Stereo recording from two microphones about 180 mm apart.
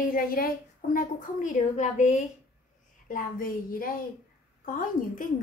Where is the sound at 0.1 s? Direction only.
55° left (ahead or behind).